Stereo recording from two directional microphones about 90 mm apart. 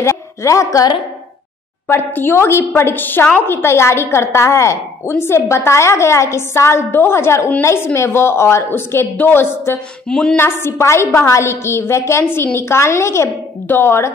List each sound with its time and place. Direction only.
0.0 s a woman's voice: 35° left (ahead or behind)
1.9 s a woman's voice: 25° left (ahead or behind)
10.0 s a woman's voice: 10° left (ahead or behind)
10.3 s a woman's voice: 25° left (ahead or behind)